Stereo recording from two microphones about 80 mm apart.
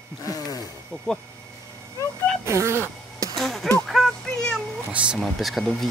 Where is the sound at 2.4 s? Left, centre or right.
Right.